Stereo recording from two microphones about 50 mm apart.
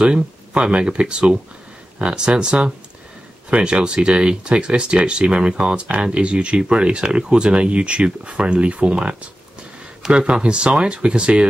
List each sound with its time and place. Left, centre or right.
0.0 s speech: centre
10.3 s speech: right